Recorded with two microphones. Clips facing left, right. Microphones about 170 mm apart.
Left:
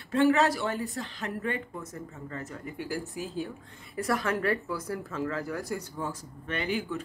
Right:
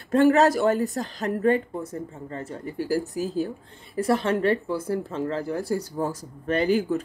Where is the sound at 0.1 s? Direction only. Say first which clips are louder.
Right 6 dB; 40° right (ahead or behind).